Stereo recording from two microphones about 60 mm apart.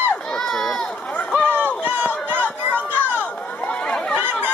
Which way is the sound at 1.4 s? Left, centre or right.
Right.